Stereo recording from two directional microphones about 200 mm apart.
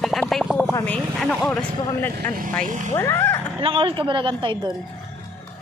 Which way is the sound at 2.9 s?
10° left (ahead or behind).